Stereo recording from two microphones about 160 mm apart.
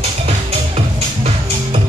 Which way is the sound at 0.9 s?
40° right (ahead or behind).